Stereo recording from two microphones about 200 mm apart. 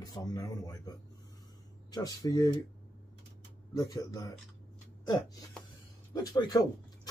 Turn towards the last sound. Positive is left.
turn(degrees=20)  # may be behind; listen again after turning